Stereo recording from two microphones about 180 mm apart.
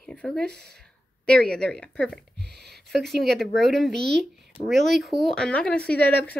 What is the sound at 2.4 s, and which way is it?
Speech, 65° right (ahead or behind).